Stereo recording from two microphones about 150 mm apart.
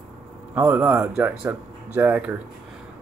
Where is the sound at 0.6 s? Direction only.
10° right (ahead or behind).